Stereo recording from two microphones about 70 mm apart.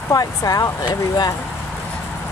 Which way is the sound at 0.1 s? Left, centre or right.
Left.